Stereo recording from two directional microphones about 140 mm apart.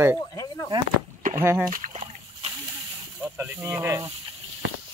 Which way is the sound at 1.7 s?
65° right (ahead or behind).